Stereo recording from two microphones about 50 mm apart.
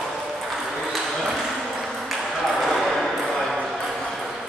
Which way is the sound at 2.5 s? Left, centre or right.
Centre.